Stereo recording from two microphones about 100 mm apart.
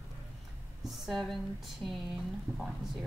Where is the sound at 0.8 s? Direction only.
Centre (ahead or behind).